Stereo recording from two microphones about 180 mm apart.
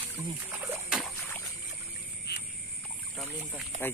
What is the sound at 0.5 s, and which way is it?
Splash, 10° right (ahead or behind).